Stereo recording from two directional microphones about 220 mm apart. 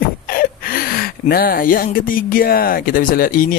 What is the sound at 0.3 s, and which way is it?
Speech, 40° left (ahead or behind).